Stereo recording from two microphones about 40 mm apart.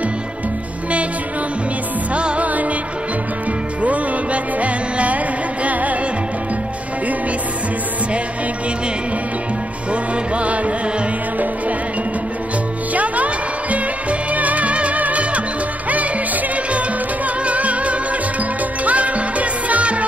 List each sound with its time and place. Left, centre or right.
2.1 s music: right
3.8 s music: right
10.3 s music: right
12.9 s music: right
17.5 s music: right